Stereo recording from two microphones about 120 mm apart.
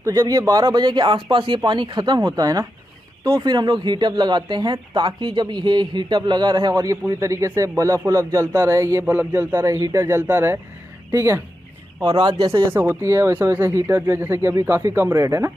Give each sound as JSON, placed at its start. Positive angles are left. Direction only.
{"t": 0.0, "sound": "speech", "side_deg": -25}
{"t": 9.0, "sound": "a man's voice", "side_deg": -15}
{"t": 12.0, "sound": "speech", "side_deg": -35}